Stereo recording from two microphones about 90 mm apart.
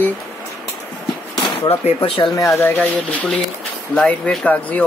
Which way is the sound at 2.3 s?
35° left (ahead or behind).